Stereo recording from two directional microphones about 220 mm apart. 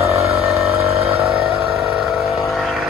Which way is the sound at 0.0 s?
15° right (ahead or behind).